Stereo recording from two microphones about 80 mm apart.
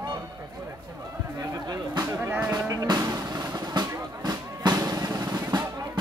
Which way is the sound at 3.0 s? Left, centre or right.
Right.